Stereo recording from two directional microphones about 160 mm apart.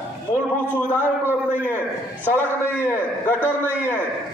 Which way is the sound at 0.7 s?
15° right (ahead or behind).